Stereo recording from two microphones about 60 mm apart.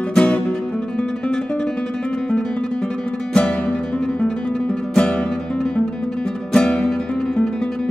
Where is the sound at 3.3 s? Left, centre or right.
Centre.